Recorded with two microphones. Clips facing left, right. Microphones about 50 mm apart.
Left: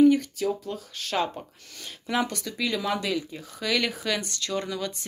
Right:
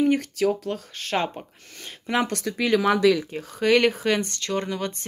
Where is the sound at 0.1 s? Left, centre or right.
Right.